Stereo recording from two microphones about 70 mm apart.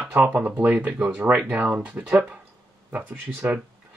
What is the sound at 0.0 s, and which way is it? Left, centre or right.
Speech, right.